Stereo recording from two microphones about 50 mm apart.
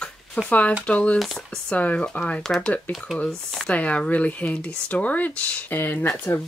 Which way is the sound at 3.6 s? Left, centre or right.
Left.